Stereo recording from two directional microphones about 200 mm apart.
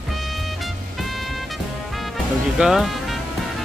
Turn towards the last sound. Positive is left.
turn(degrees=0)  # may be behind; listen again after turning